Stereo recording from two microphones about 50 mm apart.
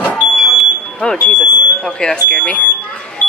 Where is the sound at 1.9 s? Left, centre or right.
Centre.